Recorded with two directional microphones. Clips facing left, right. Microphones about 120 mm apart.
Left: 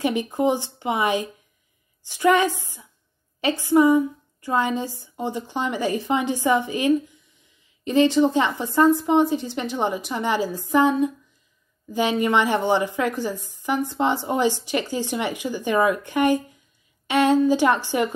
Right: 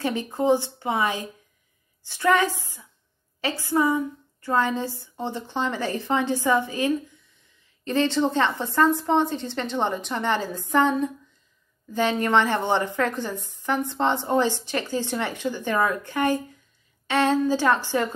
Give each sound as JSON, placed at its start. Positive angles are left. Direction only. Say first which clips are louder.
{"t": 0.0, "sound": "a woman's voice", "louder": "left 3 dB", "side_deg": 15}